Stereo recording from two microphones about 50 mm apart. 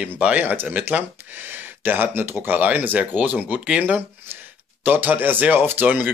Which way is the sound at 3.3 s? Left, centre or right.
Right.